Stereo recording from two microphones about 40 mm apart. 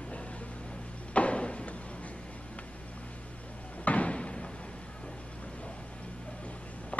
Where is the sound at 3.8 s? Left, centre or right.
Left.